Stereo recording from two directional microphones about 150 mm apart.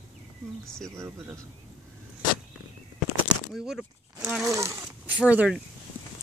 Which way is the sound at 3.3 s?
5° right (ahead or behind).